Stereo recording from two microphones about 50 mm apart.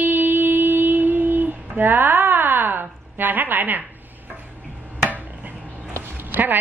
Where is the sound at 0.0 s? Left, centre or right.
Right.